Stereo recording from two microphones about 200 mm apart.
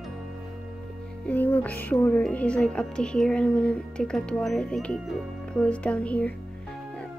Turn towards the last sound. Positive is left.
turn(degrees=5)  # may be behind; listen again after turning